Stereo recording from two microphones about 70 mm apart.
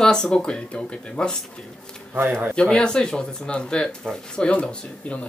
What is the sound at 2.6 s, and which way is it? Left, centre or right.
Speech, centre.